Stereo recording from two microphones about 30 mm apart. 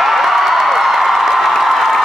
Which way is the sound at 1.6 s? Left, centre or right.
Centre.